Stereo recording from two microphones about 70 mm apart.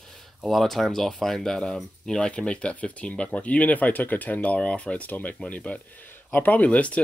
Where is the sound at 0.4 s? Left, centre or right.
Centre.